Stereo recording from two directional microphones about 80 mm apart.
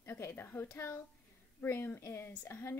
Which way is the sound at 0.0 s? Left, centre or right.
Left.